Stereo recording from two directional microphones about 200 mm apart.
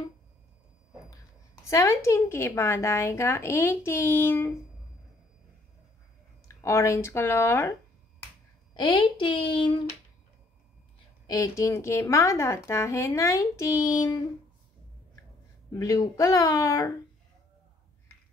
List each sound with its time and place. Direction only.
1.7 s a woman's voice: 15° left (ahead or behind)
6.4 s a woman's voice: 15° left (ahead or behind)
8.7 s speech: 25° left (ahead or behind)
11.2 s a woman's voice: 15° left (ahead or behind)
15.8 s a woman's voice: 15° left (ahead or behind)